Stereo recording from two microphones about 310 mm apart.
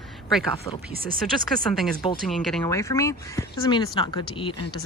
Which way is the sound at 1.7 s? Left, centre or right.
Centre.